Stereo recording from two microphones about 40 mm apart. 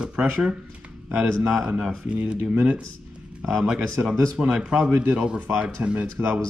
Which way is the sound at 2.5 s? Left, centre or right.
Right.